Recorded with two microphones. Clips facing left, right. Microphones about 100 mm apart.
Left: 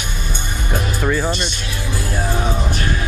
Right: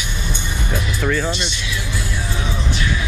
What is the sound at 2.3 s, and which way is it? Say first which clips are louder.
Music: left 4 dB; 45° left (ahead or behind).